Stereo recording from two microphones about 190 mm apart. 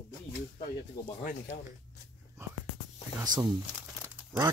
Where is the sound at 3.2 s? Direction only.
20° right (ahead or behind).